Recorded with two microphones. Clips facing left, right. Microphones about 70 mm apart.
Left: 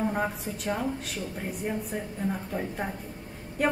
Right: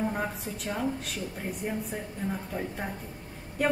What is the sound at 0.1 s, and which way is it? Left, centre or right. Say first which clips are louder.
A woman's voice: left 3 dB; centre.